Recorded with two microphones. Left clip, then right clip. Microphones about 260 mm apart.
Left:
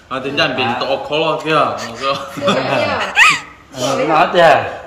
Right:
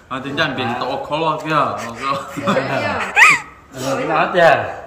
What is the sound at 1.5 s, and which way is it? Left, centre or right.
Speech, centre.